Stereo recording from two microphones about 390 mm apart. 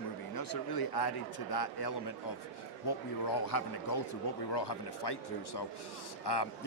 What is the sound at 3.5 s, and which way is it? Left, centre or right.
Speech, left.